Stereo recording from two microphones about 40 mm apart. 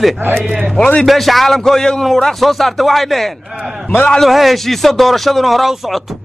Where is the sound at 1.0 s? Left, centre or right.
Centre.